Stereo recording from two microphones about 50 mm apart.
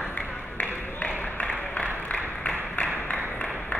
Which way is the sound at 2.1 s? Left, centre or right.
Left.